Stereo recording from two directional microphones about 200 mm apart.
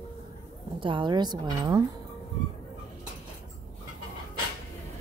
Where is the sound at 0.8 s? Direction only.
25° right (ahead or behind).